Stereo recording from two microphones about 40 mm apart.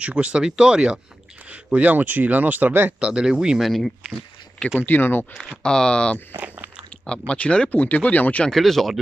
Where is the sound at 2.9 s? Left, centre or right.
Right.